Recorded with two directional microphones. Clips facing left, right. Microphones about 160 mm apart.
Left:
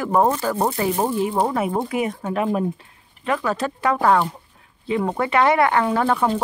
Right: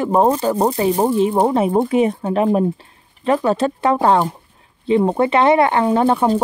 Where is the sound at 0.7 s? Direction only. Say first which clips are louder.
Right 5 dB; 30° right (ahead or behind).